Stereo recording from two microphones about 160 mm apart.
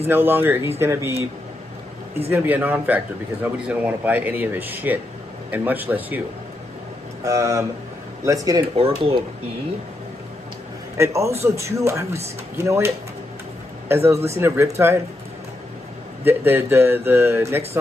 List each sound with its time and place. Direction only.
0.1 s speech: 15° right (ahead or behind)
2.2 s speech: 10° right (ahead or behind)
7.2 s speech: 20° right (ahead or behind)
8.7 s speech: 35° right (ahead or behind)
11.0 s speech: 20° right (ahead or behind)
16.3 s speech: 15° right (ahead or behind)